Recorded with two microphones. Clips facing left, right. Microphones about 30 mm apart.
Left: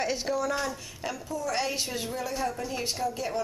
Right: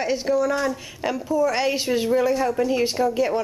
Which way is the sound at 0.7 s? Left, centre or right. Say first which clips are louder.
Right 9 dB; centre.